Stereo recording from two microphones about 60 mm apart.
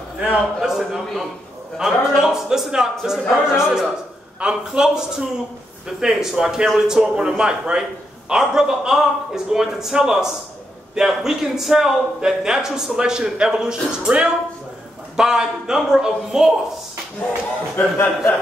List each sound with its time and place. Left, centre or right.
0.6 s a man's voice: centre
17.7 s a man's voice: left